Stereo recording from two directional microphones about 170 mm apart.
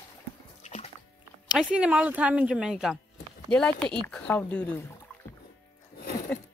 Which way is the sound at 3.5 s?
5° left (ahead or behind).